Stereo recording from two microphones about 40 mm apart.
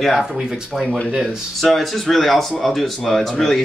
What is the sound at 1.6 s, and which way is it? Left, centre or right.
Speech, centre.